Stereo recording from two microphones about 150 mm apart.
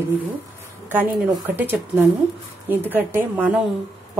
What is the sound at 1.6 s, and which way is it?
A woman's voice, 15° right (ahead or behind).